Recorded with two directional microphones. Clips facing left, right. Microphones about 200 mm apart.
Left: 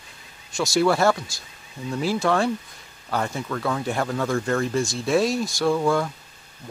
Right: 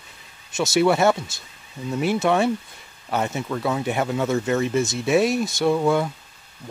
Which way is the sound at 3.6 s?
5° right (ahead or behind).